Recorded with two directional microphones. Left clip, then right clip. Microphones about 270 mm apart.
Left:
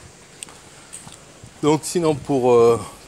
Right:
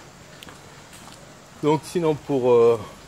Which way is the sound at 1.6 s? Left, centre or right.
Left.